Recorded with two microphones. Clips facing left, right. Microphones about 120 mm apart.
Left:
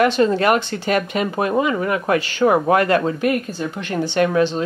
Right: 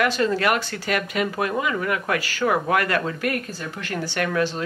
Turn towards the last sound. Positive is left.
turn(degrees=25)  # may be behind; listen again after turning